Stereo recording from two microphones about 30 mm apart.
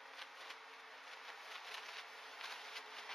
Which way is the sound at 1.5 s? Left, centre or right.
Centre.